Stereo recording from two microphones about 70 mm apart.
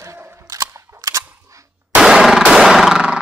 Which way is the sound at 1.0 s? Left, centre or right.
Right.